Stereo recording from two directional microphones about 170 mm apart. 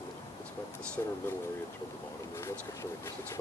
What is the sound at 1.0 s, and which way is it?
Speech, 15° left (ahead or behind).